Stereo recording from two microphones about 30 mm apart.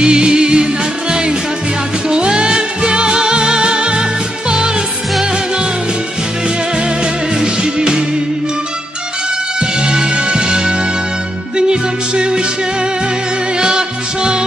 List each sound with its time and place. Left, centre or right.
0.0 s music: right
2.0 s music: right
7.4 s music: right
9.6 s music: right
13.6 s music: right